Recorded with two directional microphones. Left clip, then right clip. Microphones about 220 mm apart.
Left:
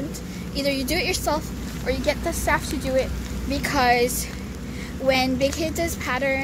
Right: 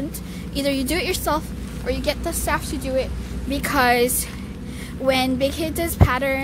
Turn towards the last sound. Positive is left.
turn(degrees=-15)  # may be behind; listen again after turning